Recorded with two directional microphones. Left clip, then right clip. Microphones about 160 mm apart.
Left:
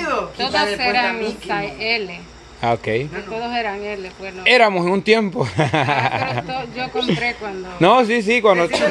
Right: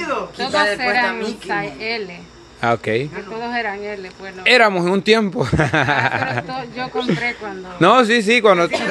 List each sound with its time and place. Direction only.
0.4 s a woman's voice: 10° left (ahead or behind)
2.6 s a man's voice: 20° right (ahead or behind)
3.3 s speech: 5° left (ahead or behind)
4.4 s a man's voice: 20° right (ahead or behind)
6.5 s speech: 5° left (ahead or behind)
7.8 s a man's voice: 30° right (ahead or behind)